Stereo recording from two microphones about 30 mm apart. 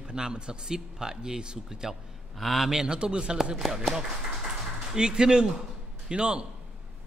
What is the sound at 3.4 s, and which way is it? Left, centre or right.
Speech, centre.